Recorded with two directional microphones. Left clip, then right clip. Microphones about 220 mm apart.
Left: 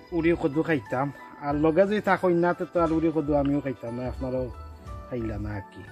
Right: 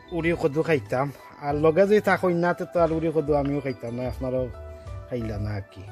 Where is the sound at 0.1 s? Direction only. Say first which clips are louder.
Even; 40° right (ahead or behind).